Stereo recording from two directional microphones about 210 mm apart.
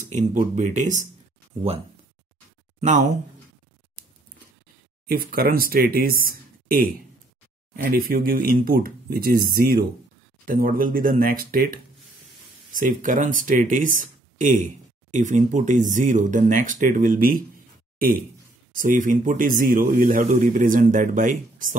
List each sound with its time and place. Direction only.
0.0 s speech: 35° right (ahead or behind)
2.8 s speech: 35° right (ahead or behind)
5.0 s speech: 45° right (ahead or behind)